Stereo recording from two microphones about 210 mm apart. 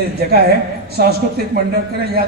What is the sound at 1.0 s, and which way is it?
Speech, 50° right (ahead or behind).